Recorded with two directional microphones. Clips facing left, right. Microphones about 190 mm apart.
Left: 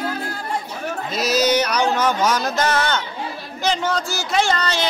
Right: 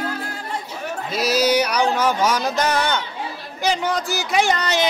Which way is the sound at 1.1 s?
10° right (ahead or behind).